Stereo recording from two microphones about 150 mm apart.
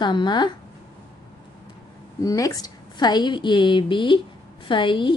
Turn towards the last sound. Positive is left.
turn(degrees=35)  # may be behind; listen again after turning